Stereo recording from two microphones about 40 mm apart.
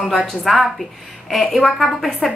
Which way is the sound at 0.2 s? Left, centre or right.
Centre.